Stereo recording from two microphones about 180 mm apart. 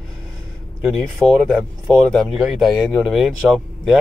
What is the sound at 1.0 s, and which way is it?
Speech, centre (ahead or behind).